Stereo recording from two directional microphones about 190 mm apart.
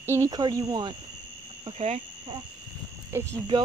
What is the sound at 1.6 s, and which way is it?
Speech, 35° right (ahead or behind).